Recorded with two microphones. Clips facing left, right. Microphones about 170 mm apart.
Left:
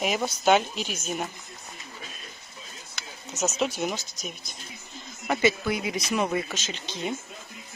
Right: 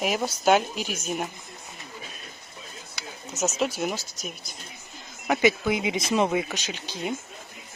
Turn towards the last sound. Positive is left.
turn(degrees=-10)  # may be behind; listen again after turning